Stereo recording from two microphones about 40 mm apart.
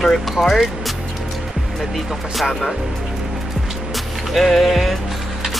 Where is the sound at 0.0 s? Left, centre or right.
Centre.